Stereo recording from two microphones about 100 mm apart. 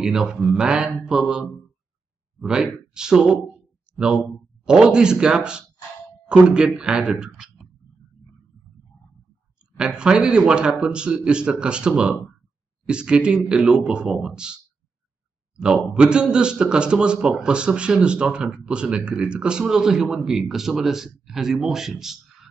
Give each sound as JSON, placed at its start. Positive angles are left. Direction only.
{"t": 0.0, "sound": "a man's voice", "side_deg": -5}
{"t": 4.6, "sound": "a man's voice", "side_deg": -10}
{"t": 9.8, "sound": "a man's voice", "side_deg": -10}